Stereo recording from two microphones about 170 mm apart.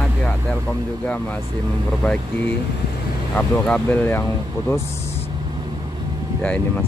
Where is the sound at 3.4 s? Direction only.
10° left (ahead or behind).